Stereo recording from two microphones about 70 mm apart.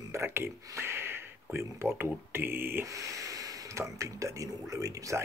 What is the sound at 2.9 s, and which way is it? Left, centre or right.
Speech, right.